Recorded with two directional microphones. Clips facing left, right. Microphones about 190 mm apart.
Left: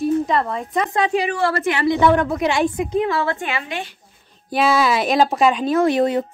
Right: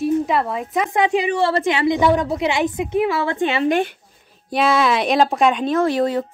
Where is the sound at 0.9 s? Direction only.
20° right (ahead or behind).